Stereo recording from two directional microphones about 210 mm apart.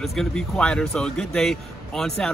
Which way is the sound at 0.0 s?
Centre (ahead or behind).